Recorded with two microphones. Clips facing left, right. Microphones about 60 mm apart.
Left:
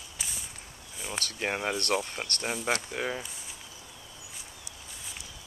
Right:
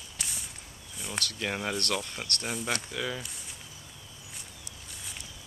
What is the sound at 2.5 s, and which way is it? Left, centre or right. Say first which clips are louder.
Speech: left 3 dB; centre.